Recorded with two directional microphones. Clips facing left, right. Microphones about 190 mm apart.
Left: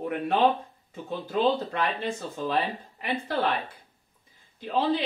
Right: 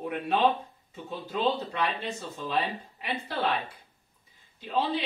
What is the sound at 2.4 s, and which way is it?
Speech, 50° left (ahead or behind).